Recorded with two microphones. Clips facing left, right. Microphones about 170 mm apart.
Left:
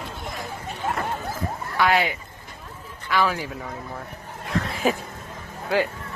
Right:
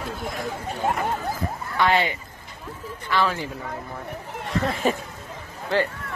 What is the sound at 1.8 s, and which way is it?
Speech, 10° left (ahead or behind).